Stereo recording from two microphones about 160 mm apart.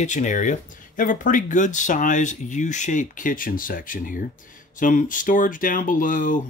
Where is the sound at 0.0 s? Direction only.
50° left (ahead or behind).